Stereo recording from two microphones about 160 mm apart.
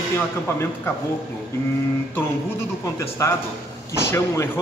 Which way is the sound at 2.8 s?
15° left (ahead or behind).